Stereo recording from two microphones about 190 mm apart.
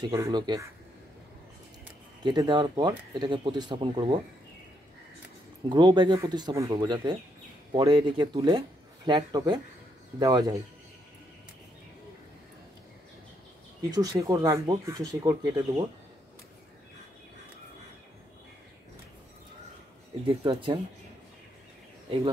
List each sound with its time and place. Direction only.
0.1 s speech: 20° right (ahead or behind)
2.2 s speech: 25° right (ahead or behind)
5.7 s speech: 25° right (ahead or behind)
13.8 s speech: 20° right (ahead or behind)
20.2 s speech: 25° right (ahead or behind)